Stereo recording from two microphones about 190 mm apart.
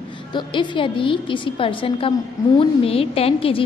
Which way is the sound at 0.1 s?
25° left (ahead or behind).